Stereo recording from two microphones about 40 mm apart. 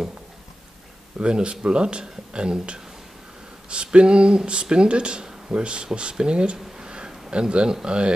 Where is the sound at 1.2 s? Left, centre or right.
Right.